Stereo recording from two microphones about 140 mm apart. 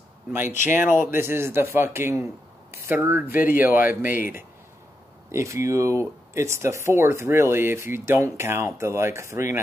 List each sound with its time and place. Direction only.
0.3 s a man's voice: 15° right (ahead or behind)
5.3 s speech: 20° right (ahead or behind)